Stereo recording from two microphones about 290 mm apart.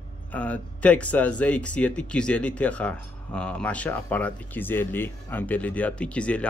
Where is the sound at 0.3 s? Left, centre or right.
Centre.